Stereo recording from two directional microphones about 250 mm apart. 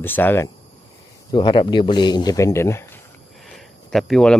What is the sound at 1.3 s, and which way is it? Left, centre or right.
Speech, centre.